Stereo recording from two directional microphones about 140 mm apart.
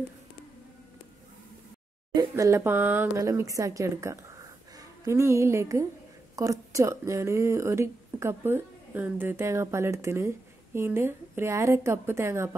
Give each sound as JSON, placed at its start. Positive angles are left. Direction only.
{"t": 2.1, "sound": "speech", "side_deg": -20}